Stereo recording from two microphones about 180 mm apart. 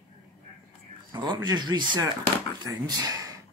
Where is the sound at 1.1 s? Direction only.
25° right (ahead or behind).